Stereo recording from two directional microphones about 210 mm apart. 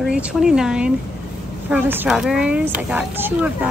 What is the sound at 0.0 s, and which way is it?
Speech, 5° right (ahead or behind).